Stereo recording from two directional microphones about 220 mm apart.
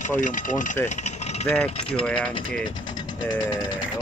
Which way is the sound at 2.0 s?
5° left (ahead or behind).